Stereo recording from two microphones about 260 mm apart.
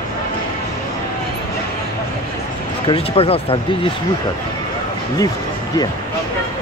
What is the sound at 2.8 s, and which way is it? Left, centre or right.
Speech, left.